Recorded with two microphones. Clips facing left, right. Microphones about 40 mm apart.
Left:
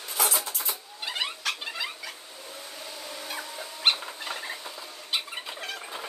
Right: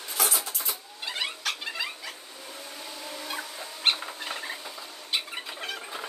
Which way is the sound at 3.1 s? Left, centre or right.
Centre.